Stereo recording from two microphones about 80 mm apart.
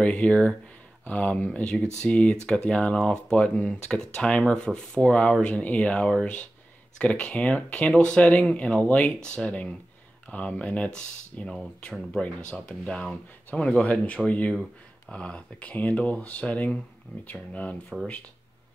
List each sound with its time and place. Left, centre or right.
0.0 s speech: centre